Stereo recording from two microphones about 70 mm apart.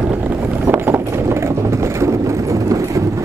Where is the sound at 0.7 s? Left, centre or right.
Right.